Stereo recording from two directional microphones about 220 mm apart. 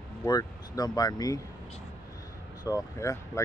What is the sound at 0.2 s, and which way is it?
Speech, 15° left (ahead or behind).